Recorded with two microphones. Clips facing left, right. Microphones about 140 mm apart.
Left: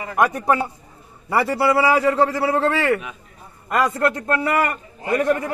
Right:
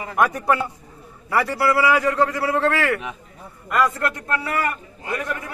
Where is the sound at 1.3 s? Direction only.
30° left (ahead or behind).